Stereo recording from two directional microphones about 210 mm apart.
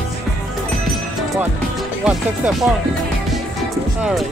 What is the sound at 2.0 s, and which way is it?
Speech, 5° right (ahead or behind).